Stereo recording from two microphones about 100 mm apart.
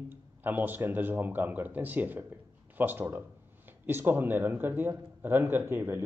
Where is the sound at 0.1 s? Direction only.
20° right (ahead or behind).